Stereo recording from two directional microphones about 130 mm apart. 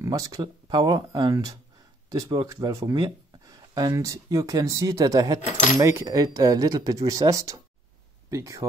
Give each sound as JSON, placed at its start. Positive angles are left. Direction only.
{"t": 0.0, "sound": "speech", "side_deg": -25}